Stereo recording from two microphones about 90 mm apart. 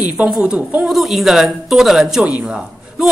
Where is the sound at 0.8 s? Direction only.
Centre (ahead or behind).